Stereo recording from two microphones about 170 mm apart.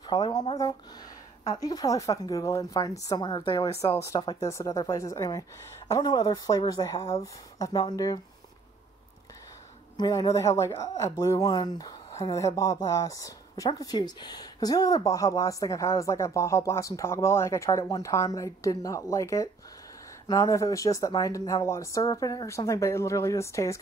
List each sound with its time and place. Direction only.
0.0 s speech: 25° left (ahead or behind)
9.9 s speech: 25° left (ahead or behind)